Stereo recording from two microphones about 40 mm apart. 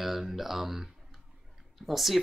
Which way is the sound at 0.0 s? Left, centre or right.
Centre.